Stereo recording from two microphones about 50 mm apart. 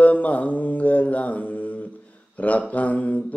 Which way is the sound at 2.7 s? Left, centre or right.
Left.